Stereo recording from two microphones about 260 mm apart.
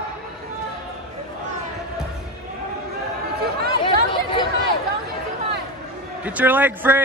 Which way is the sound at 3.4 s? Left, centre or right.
Right.